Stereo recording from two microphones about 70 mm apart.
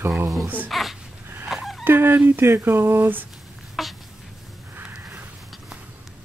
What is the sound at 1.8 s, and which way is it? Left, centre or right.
Speech, right.